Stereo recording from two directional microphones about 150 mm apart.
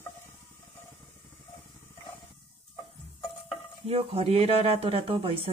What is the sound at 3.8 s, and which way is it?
Speech, 40° right (ahead or behind).